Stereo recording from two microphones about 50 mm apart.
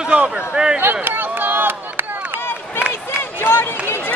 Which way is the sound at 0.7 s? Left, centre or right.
Right.